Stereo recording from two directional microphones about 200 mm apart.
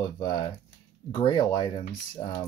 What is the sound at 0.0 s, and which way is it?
Speech, 20° left (ahead or behind).